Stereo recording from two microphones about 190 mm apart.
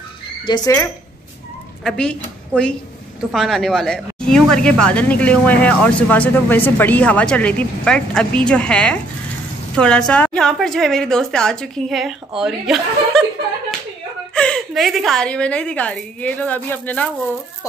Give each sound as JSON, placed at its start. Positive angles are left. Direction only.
{"t": 0.5, "sound": "speech", "side_deg": 25}
{"t": 1.9, "sound": "a woman's voice", "side_deg": 5}
{"t": 14.3, "sound": "a woman's voice", "side_deg": 5}